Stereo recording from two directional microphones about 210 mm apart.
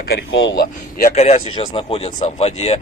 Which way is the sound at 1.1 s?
30° left (ahead or behind).